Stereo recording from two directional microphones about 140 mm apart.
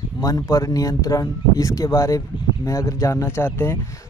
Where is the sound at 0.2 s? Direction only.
25° left (ahead or behind).